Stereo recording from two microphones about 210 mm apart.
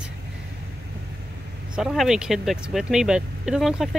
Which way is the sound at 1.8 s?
Centre (ahead or behind).